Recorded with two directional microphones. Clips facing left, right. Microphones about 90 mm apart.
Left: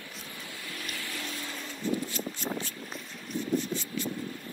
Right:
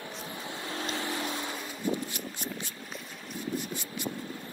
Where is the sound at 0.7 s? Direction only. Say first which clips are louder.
Right 7 dB; 25° right (ahead or behind).